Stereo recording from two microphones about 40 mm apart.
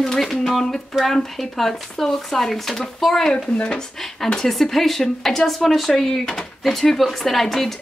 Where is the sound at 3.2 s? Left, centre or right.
Left.